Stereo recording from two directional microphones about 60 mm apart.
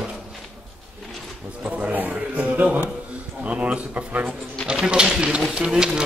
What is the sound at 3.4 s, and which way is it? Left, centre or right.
Speech, right.